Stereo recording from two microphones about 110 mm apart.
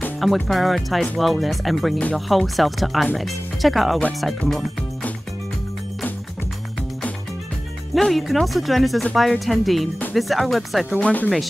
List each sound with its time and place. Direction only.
0.2 s speech: centre (ahead or behind)
7.9 s speech: centre (ahead or behind)
11.0 s speech: 10° left (ahead or behind)